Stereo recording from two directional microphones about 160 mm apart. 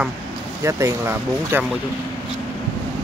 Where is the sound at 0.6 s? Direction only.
15° right (ahead or behind).